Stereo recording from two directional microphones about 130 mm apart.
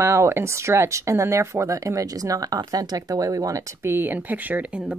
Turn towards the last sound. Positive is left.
turn(degrees=-10)  # may be behind; listen again after turning